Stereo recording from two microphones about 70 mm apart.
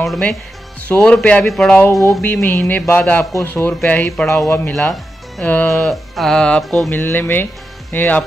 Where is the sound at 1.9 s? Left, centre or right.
Left.